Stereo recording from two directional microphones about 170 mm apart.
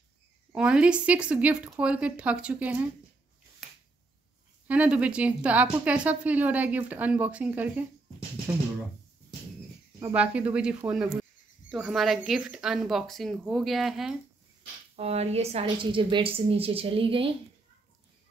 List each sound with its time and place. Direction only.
0.5 s a woman's voice: 5° right (ahead or behind)
4.6 s a woman's voice: 10° right (ahead or behind)
10.1 s a woman's voice: 10° right (ahead or behind)
15.0 s a woman's voice: 40° right (ahead or behind)